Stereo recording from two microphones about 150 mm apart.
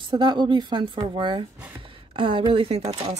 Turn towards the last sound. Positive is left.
turn(degrees=-45)  # may be behind; listen again after turning